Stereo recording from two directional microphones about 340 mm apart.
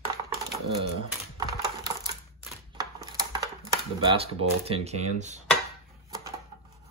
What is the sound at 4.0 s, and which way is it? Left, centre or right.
Speech, centre.